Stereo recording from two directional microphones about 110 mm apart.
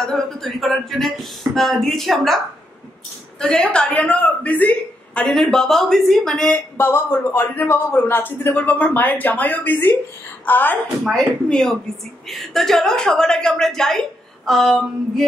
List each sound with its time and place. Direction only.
0.0 s a woman's voice: 5° left (ahead or behind)
11.1 s a woman's voice: 5° left (ahead or behind)